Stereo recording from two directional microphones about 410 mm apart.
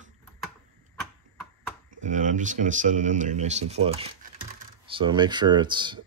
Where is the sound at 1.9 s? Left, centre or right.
Centre.